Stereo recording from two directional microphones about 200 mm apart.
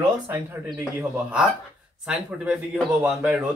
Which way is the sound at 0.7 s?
5° right (ahead or behind).